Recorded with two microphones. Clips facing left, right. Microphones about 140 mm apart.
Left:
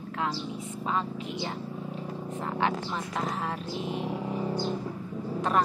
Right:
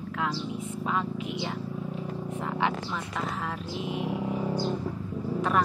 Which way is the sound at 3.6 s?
5° right (ahead or behind).